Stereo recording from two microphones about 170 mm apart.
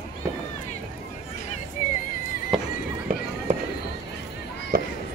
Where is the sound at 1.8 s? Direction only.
50° left (ahead or behind).